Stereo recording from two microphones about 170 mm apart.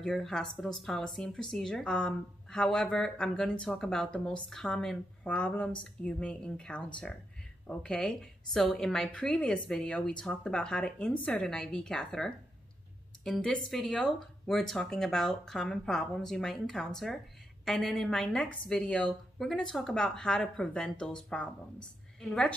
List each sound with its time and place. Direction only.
0.0 s a woman's voice: centre (ahead or behind)